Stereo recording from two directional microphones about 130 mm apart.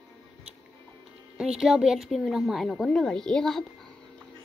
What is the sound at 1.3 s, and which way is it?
A woman's voice, 5° right (ahead or behind).